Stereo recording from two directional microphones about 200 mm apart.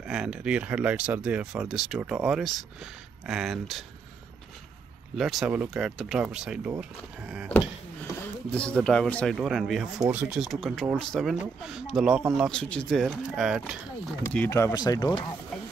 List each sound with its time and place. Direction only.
0.0 s speech: 5° right (ahead or behind)
5.1 s speech: centre (ahead or behind)
8.2 s speech: 5° left (ahead or behind)
14.3 s speech: 10° left (ahead or behind)